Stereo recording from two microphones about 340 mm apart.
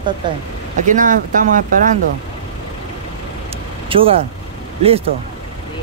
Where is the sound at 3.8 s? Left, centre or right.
Centre.